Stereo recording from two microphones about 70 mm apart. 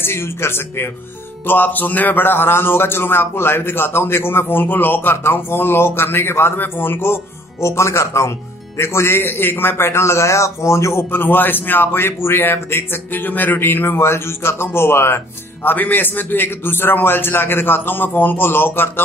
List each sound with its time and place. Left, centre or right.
0.0 s a man's voice: left